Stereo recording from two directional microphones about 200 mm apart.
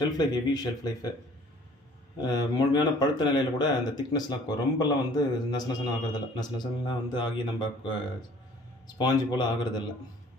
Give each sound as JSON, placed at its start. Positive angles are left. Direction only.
{"t": 0.2, "sound": "speech", "side_deg": 20}
{"t": 2.1, "sound": "speech", "side_deg": 20}